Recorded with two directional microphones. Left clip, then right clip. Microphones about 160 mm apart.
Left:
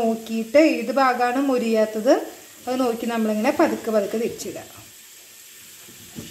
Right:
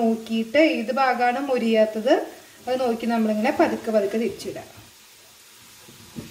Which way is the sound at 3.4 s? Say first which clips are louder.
Left 3 dB; 40° left (ahead or behind).